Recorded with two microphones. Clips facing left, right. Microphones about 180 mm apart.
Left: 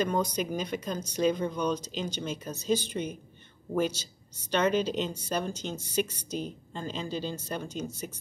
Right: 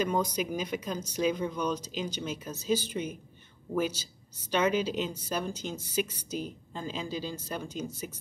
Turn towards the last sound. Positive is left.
turn(degrees=-5)  # may be behind; listen again after turning